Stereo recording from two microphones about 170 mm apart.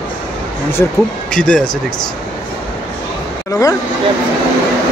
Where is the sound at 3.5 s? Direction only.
20° left (ahead or behind).